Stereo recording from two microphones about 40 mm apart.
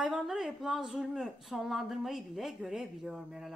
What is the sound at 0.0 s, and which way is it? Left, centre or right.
A woman's voice, centre.